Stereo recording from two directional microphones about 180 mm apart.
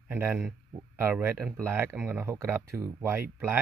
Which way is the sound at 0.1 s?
10° right (ahead or behind).